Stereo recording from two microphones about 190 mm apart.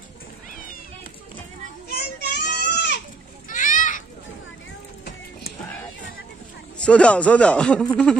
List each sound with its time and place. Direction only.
1.9 s children playing: 60° left (ahead or behind)
3.4 s children playing: 45° left (ahead or behind)
6.8 s speech: 5° left (ahead or behind)